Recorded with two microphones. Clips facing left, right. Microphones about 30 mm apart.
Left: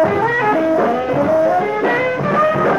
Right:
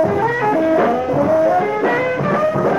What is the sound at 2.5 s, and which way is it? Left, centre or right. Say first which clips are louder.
Music: left 2 dB; left.